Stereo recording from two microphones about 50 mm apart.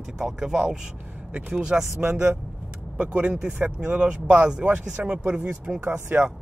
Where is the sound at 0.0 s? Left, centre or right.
Centre.